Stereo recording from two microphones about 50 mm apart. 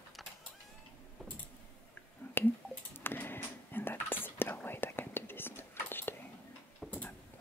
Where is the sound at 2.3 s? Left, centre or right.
Left.